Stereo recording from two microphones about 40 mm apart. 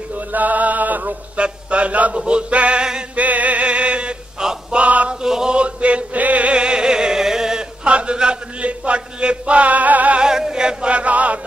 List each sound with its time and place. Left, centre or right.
0.3 s music: right
1.3 s music: right
3.2 s music: right
4.4 s male singing: centre
4.7 s male singing: right
5.2 s chant: centre
5.6 s chant: right; by 7.6 s centre
7.8 s a sound: right
10.1 s chant: centre; by 11.3 s right